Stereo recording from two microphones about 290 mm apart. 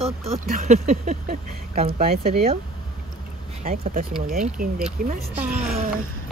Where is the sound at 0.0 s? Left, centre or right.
Right.